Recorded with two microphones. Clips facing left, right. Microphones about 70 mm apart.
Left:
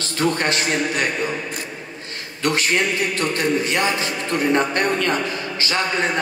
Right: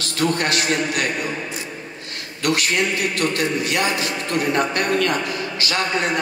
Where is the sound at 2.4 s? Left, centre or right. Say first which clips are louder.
Even; left.